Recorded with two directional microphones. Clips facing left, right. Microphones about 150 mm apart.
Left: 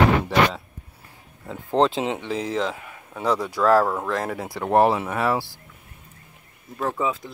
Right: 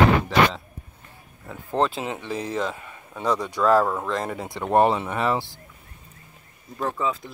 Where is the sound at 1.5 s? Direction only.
15° left (ahead or behind).